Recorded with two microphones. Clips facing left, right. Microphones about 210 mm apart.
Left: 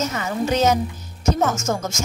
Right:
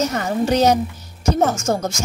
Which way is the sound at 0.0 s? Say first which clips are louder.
Right 3 dB; 40° right (ahead or behind).